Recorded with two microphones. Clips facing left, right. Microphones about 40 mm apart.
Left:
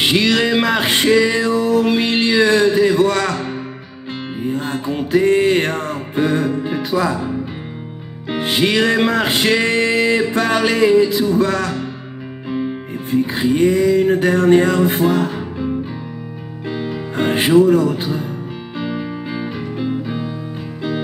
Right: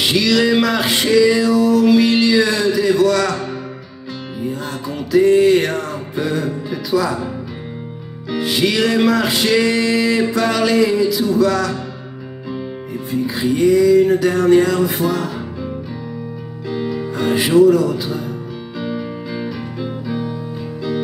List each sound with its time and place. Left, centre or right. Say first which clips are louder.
0.0 s music: even; left
8.3 s music: left 1 dB; left
12.4 s music: left 5 dB; left
12.9 s music: left 2 dB; left
16.7 s music: right 1 dB; left